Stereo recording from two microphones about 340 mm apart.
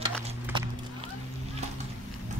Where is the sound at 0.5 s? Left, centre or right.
Centre.